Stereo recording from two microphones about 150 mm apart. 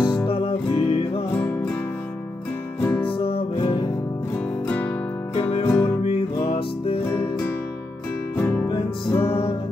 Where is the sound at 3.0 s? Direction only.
35° left (ahead or behind).